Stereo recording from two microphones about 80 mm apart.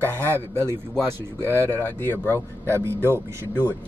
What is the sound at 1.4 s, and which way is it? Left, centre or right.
Music, left.